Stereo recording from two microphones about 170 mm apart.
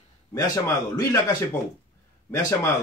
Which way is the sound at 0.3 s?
20° left (ahead or behind).